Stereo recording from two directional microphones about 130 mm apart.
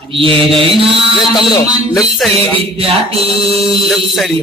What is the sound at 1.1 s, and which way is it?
Speech, 30° left (ahead or behind).